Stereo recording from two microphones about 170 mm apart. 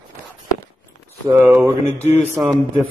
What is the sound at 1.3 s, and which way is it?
Speech, 20° right (ahead or behind).